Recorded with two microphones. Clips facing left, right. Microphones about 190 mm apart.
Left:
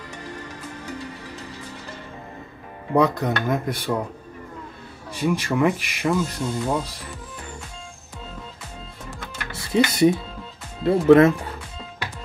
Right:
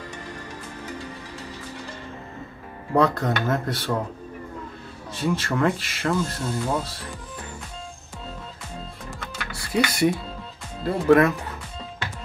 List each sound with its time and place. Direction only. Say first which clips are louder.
2.9 s speech: left 1 dB; 15° left (ahead or behind)
5.1 s speech: left 2 dB; 15° left (ahead or behind)
9.5 s speech: left 4 dB; 20° left (ahead or behind)